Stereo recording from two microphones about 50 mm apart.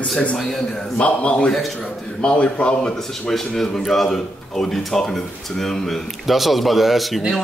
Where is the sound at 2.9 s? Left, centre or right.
Centre.